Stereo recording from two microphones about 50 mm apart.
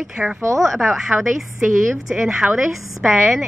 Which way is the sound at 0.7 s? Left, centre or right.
Centre.